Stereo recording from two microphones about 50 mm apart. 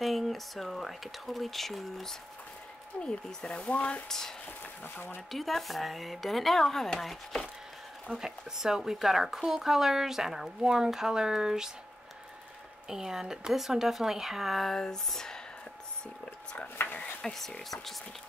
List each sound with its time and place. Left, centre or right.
0.0 s speech: centre
3.0 s speech: centre
5.3 s speech: centre
8.1 s speech: centre
12.8 s speech: centre
14.8 s speech: centre
16.8 s a sound: left
17.2 s speech: centre